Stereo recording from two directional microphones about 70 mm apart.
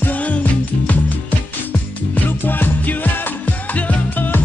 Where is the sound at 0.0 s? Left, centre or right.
Left.